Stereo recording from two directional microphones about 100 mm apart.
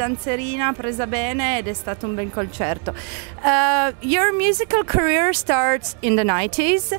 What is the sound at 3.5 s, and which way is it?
Speech, 10° right (ahead or behind).